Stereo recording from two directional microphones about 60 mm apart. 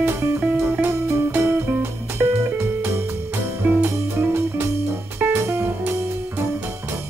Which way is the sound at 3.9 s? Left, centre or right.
Right.